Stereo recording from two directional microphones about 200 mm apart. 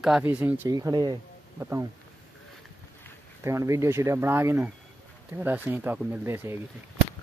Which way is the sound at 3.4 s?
15° right (ahead or behind).